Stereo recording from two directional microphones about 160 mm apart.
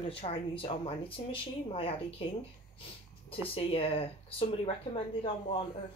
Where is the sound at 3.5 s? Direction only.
35° left (ahead or behind).